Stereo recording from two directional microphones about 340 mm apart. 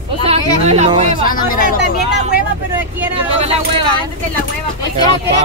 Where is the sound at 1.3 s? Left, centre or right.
Left.